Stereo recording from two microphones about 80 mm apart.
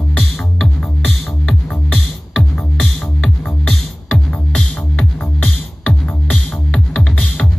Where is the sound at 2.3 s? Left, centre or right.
Centre.